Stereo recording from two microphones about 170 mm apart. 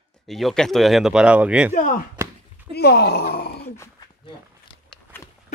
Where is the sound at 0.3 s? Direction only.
Centre (ahead or behind).